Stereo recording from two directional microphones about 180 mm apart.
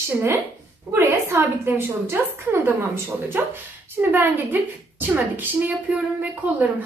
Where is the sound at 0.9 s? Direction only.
15° right (ahead or behind).